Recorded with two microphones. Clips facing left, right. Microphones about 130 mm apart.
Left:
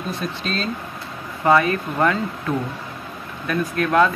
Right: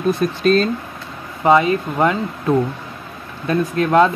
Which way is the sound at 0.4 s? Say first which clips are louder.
Right 15 dB; 50° right (ahead or behind).